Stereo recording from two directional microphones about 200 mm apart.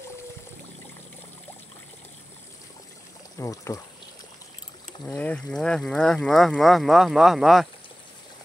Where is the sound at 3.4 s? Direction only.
15° left (ahead or behind).